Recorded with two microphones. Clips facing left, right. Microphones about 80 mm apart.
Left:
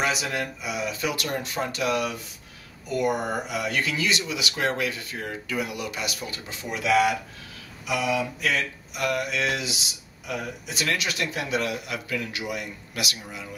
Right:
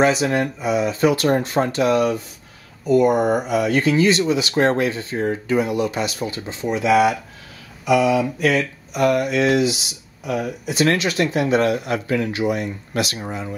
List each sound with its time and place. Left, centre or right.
0.0 s speech: right
7.8 s speech: right
8.9 s speech: right
10.8 s speech: right